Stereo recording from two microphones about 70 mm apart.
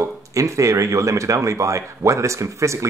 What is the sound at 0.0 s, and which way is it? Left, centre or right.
Speech, right.